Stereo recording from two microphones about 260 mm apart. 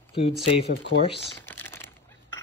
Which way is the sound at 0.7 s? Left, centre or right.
Left.